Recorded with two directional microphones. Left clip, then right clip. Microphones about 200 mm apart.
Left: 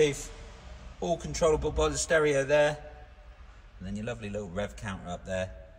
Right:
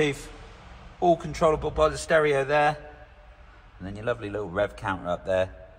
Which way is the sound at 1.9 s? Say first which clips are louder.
Right 3 dB; 20° right (ahead or behind).